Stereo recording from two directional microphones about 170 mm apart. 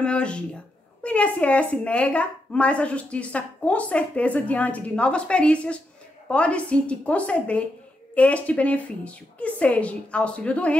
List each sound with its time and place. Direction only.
0.0 s a woman's voice: 5° left (ahead or behind)